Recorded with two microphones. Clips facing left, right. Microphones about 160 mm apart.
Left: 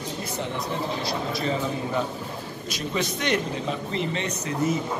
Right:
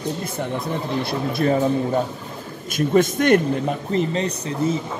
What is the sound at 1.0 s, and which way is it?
A man's voice, 55° right (ahead or behind).